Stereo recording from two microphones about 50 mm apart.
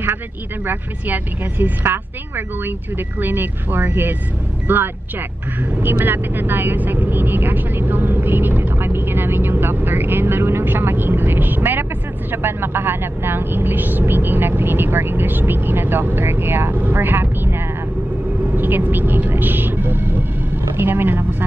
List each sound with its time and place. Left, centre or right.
0.7 s speech: right
18.4 s speech: right